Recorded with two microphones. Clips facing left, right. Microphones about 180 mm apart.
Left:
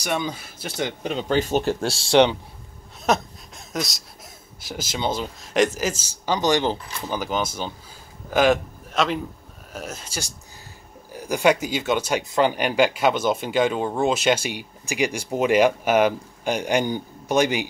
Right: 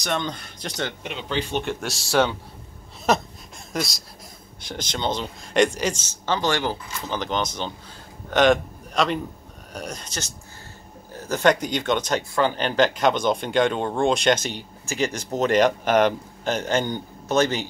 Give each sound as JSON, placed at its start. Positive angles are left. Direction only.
{"t": 0.0, "sound": "speech", "side_deg": 10}
{"t": 1.0, "sound": "speech", "side_deg": 40}
{"t": 3.1, "sound": "speech", "side_deg": 0}
{"t": 7.2, "sound": "a man's voice", "side_deg": 5}